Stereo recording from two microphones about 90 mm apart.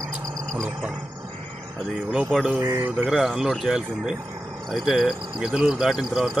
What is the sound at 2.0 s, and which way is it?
Speech, 5° right (ahead or behind).